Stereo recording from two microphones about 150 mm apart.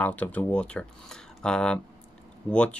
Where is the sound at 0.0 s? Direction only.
10° left (ahead or behind).